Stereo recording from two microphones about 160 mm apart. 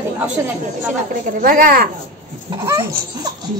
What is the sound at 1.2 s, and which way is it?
Speech, 60° right (ahead or behind).